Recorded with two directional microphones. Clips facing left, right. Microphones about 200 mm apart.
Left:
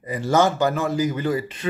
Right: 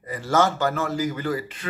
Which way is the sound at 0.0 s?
15° left (ahead or behind).